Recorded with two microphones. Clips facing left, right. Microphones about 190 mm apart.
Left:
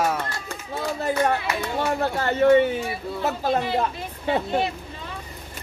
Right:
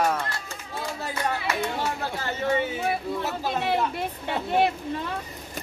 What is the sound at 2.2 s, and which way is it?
Speech, 60° left (ahead or behind).